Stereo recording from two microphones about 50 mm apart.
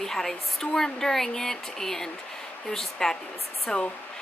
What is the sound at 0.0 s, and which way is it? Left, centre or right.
Speech, centre.